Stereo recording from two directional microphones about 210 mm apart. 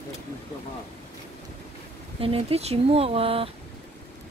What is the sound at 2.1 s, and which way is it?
Speech, 25° right (ahead or behind).